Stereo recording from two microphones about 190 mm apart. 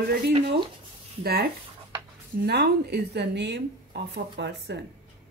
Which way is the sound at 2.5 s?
60° right (ahead or behind).